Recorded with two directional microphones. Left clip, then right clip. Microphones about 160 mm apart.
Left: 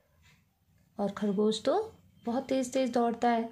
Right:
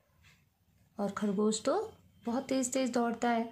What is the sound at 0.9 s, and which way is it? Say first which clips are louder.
Speech: left 3 dB; 20° left (ahead or behind).